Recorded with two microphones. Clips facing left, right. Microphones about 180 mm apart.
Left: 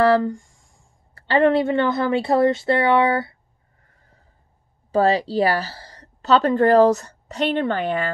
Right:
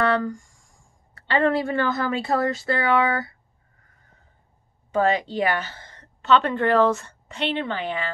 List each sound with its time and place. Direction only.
0.0 s a woman's voice: 25° left (ahead or behind)
3.9 s a sound: 30° left (ahead or behind)
4.9 s a woman's voice: 35° left (ahead or behind)